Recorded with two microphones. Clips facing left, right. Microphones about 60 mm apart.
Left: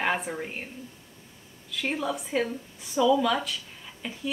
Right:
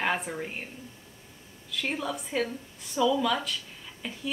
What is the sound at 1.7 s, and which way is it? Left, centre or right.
A woman's voice, centre.